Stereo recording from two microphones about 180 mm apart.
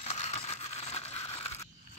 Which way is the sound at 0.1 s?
35° left (ahead or behind).